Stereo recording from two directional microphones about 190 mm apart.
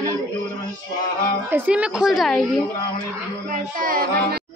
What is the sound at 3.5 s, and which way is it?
Speech, 45° right (ahead or behind).